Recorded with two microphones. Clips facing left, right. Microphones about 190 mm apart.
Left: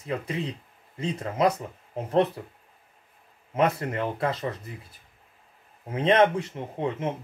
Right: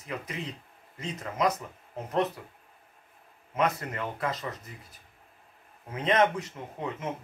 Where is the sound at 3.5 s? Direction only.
30° left (ahead or behind).